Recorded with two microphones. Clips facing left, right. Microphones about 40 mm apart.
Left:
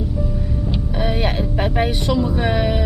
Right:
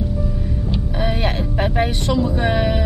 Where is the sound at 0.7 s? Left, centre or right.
Centre.